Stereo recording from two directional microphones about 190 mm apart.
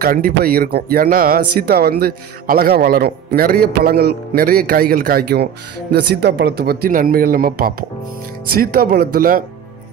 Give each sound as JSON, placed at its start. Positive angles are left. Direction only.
{"t": 0.0, "sound": "a man's voice", "side_deg": -50}